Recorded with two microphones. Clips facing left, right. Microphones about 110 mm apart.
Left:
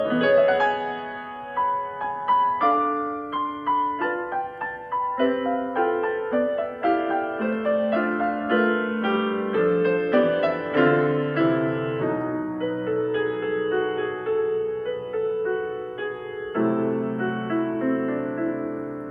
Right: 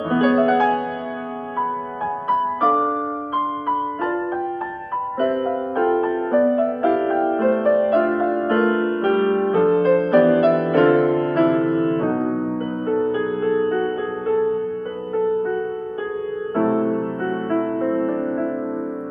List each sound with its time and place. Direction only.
0.1 s music: 30° right (ahead or behind)
2.2 s music: 25° right (ahead or behind)
5.2 s music: 30° right (ahead or behind)
9.5 s music: 30° right (ahead or behind)
16.5 s music: 25° right (ahead or behind)